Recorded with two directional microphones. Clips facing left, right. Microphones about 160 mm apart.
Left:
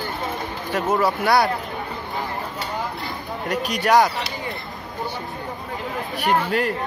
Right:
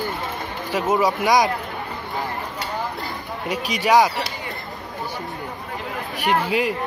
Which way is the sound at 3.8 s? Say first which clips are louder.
Right 1 dB; 5° right (ahead or behind).